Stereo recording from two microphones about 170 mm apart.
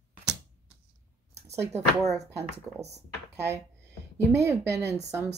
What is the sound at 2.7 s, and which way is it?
Speech, 5° right (ahead or behind).